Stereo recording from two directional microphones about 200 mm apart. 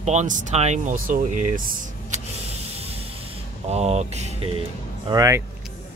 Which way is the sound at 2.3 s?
30° right (ahead or behind).